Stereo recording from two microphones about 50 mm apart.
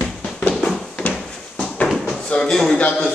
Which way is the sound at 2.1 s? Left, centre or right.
Centre.